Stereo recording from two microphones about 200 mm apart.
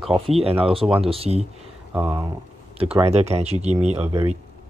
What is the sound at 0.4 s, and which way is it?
Speech, 30° right (ahead or behind).